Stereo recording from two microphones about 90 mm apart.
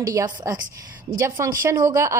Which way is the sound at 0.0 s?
45° right (ahead or behind).